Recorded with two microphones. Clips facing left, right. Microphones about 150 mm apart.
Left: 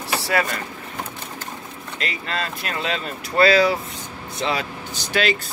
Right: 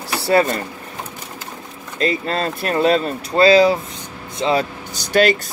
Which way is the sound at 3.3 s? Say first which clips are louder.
Right 4 dB; 25° right (ahead or behind).